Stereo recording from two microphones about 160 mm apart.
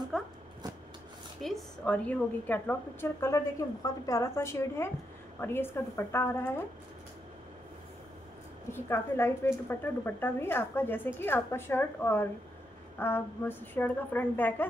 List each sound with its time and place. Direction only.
0.1 s a sound: centre (ahead or behind)
1.4 s a woman's voice: 5° left (ahead or behind)
8.7 s a woman's voice: 15° left (ahead or behind)